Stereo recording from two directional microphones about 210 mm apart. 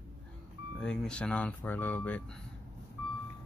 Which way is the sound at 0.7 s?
5° left (ahead or behind).